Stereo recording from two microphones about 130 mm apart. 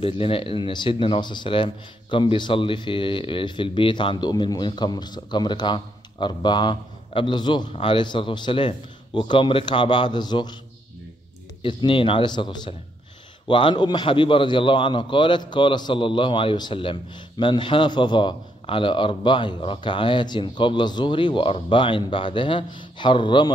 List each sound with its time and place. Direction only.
0.0 s a man's voice: 45° left (ahead or behind)
11.6 s a man's voice: 40° left (ahead or behind)